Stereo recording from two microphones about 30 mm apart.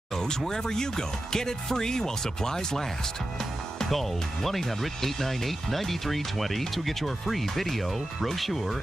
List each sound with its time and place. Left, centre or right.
0.1 s a sound: left
0.5 s speech: left
3.8 s speech: centre